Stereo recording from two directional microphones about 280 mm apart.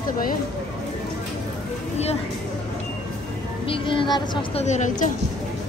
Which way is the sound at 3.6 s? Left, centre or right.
Centre.